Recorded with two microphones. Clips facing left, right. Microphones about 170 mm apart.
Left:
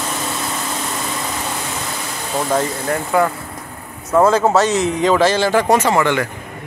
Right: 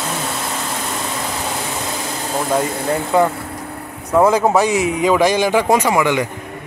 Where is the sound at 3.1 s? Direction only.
20° right (ahead or behind).